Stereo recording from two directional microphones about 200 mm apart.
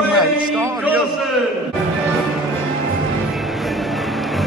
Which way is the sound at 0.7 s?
5° right (ahead or behind).